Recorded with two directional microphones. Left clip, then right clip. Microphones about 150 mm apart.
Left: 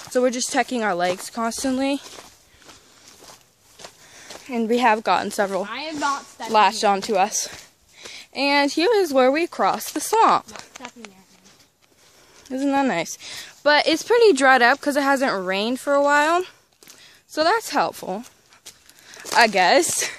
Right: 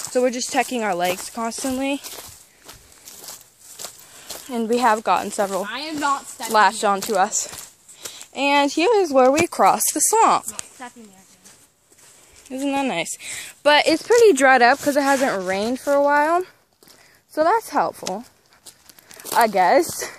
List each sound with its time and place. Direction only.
0.1 s speech: 5° left (ahead or behind)
2.0 s a sound: 60° right (ahead or behind)
4.5 s speech: 10° left (ahead or behind)
5.6 s speech: 5° right (ahead or behind)
6.0 s speech: 5° left (ahead or behind)
8.1 s a sound: 10° left (ahead or behind)
8.5 s speech: centre (ahead or behind)
9.5 s speech: 15° right (ahead or behind)
10.1 s speech: 15° left (ahead or behind)
12.4 s speech: 25° left (ahead or behind)
13.6 s speech: centre (ahead or behind)
13.9 s speech: 15° left (ahead or behind)
14.2 s speech: centre (ahead or behind); by 18.2 s 25° left (ahead or behind)
19.3 s speech: 20° left (ahead or behind)